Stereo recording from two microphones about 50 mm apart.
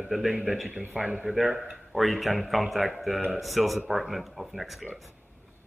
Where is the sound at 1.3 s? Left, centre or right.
Centre.